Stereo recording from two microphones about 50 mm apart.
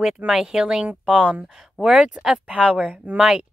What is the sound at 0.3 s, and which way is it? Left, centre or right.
Speech, centre.